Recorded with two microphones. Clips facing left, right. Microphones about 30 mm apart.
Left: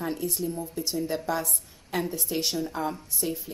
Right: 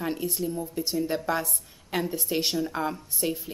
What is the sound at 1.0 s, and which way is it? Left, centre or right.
Speech, centre.